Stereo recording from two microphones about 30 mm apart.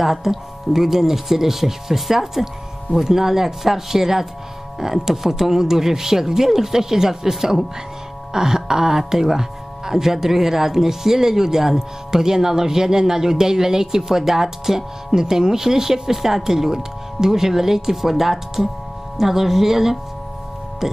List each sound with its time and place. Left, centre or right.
0.0 s speech: centre